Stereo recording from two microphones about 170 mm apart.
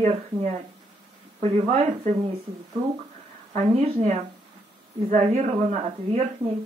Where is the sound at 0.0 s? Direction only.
40° right (ahead or behind).